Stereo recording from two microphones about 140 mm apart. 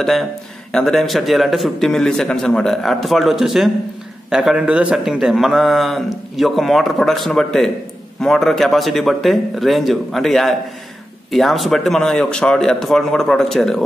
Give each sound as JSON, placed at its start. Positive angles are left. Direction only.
{"t": 0.0, "sound": "speech", "side_deg": 5}